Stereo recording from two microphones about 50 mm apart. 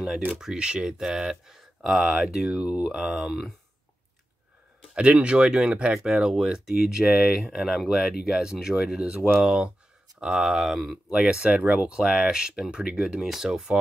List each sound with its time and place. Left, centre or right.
0.4 s speech: centre
3.0 s speech: centre
4.9 s speech: right; by 11.0 s centre
11.1 s speech: centre
11.4 s speech: right